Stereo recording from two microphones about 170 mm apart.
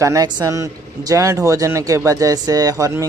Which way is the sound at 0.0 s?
20° right (ahead or behind).